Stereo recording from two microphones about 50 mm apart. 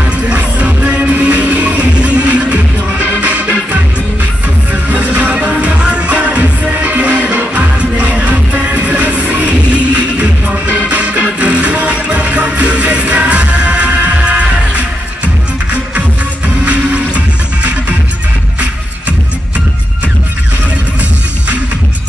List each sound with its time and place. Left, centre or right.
0.3 s music: right
4.8 s music: right
10.9 s organ: right
11.3 s music: right
16.6 s music: right